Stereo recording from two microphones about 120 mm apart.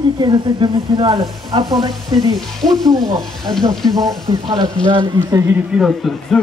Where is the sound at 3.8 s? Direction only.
Centre (ahead or behind).